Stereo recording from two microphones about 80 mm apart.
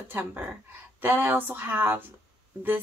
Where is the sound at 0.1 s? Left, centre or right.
Right.